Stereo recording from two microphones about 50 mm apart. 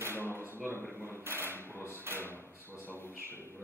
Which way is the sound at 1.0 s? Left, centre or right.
Right.